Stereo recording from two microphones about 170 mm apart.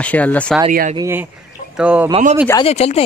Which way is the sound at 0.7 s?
50° right (ahead or behind).